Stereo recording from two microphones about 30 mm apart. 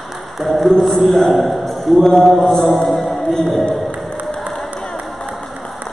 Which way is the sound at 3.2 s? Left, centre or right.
Centre.